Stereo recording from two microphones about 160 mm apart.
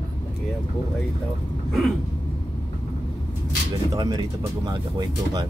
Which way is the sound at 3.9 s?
25° right (ahead or behind).